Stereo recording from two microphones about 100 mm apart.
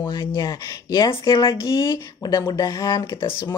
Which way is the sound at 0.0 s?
50° left (ahead or behind).